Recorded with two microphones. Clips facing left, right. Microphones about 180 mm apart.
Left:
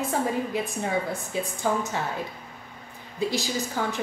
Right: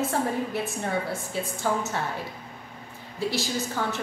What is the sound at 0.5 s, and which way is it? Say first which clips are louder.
Speech: left 1 dB; 15° left (ahead or behind).